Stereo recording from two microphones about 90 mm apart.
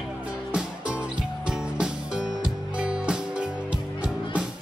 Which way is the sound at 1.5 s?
10° right (ahead or behind).